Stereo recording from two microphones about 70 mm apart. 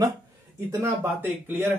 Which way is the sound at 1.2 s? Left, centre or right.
Right.